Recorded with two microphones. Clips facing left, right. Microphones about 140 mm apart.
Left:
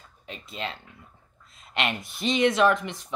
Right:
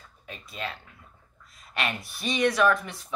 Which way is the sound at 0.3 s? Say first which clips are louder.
Left 1 dB; 20° left (ahead or behind).